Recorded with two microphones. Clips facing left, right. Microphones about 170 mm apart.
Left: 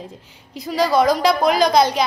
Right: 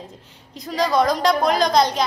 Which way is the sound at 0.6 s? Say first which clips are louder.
Left 2 dB; 5° left (ahead or behind).